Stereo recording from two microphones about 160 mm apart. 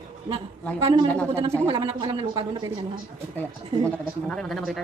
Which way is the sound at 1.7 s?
30° right (ahead or behind).